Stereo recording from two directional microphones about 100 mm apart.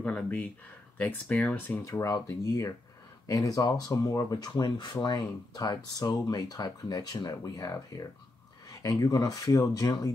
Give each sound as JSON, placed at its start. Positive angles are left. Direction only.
{"t": 0.0, "sound": "speech", "side_deg": 15}